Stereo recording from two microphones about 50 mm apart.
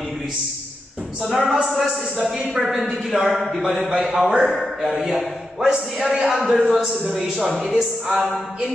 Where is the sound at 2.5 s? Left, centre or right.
Centre.